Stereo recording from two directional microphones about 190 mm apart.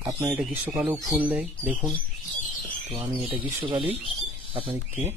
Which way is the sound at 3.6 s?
30° right (ahead or behind).